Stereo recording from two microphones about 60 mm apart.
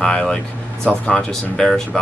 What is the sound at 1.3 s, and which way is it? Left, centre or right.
Speech, centre.